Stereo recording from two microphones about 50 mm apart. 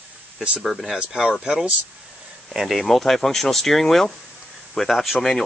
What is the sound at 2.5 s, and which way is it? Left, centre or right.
Speech, centre.